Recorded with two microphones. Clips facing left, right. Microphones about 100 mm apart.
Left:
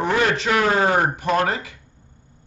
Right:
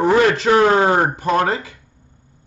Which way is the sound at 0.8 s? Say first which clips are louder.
Right 3 dB; 20° right (ahead or behind).